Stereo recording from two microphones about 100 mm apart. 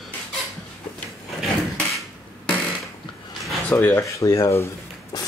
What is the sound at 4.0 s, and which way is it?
Speech, 30° left (ahead or behind).